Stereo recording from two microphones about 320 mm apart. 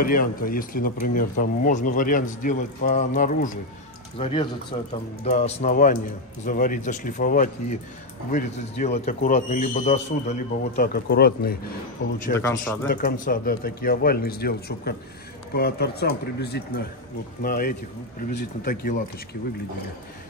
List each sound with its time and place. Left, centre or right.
0.0 s a man's voice: left